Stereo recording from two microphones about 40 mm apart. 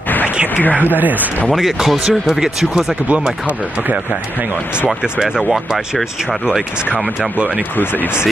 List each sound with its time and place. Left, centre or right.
1.5 s speech: centre
6.9 s speech: right
7.7 s speech: left